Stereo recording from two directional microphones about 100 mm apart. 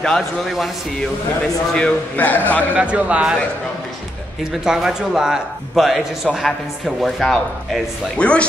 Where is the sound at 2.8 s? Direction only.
10° right (ahead or behind).